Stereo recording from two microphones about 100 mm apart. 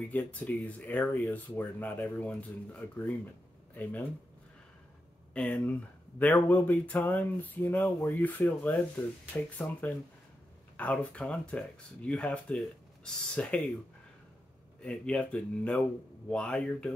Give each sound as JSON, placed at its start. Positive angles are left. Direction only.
{"t": 0.1, "sound": "speech", "side_deg": 15}
{"t": 5.3, "sound": "speech", "side_deg": 15}
{"t": 14.8, "sound": "speech", "side_deg": 10}